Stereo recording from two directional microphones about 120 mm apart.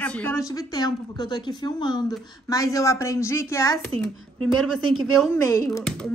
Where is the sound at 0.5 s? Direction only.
35° left (ahead or behind).